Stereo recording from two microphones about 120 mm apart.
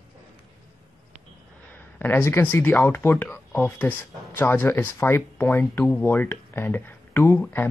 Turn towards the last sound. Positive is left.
turn(degrees=15)  # may be behind; listen again after turning